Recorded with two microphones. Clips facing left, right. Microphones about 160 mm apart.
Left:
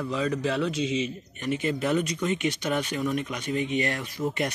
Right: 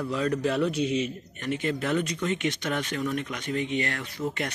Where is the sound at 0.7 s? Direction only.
90° left.